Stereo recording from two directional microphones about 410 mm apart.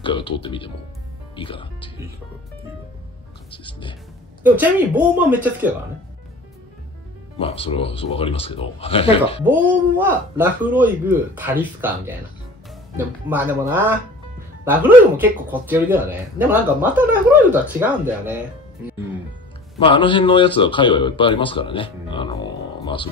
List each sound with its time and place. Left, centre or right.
0.0 s speech: centre
4.4 s speech: centre
7.3 s speech: centre
9.4 s speech: centre
12.9 s speech: centre
19.8 s speech: centre